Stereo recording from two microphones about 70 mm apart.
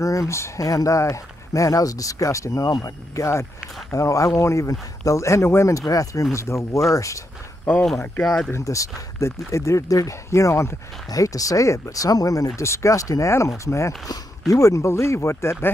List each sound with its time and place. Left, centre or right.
0.0 s speech: left
8.2 s speech: centre
8.5 s speech: left
11.1 s speech: left
12.5 s speech: left